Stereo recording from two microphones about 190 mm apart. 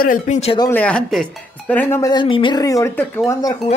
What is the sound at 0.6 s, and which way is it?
Speech, 10° left (ahead or behind).